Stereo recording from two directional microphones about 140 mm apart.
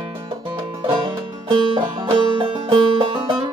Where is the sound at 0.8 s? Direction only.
40° right (ahead or behind).